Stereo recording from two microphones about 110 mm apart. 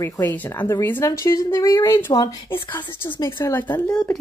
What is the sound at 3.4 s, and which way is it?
Speech, 20° left (ahead or behind).